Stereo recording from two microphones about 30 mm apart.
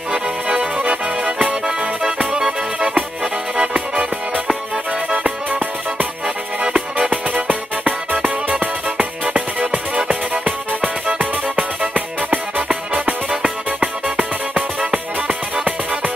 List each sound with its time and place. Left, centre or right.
0.1 s accordion: right
0.8 s music: right
3.5 s music: right
5.1 s music: right
12.6 s music: right
13.7 s music: right